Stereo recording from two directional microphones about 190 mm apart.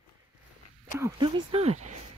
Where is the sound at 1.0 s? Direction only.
20° right (ahead or behind).